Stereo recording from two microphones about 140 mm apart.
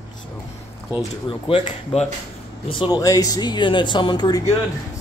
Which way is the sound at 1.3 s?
40° left (ahead or behind).